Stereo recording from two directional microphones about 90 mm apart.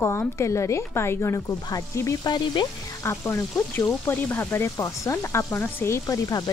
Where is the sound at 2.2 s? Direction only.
55° left (ahead or behind).